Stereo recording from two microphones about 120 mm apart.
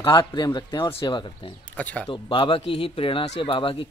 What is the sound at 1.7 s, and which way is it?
Speech, 10° left (ahead or behind).